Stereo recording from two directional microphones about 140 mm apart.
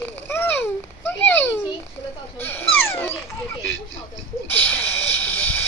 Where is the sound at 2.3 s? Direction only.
15° left (ahead or behind).